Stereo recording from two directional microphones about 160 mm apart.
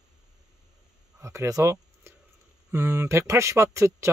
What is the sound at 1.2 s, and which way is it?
Speech, 20° right (ahead or behind).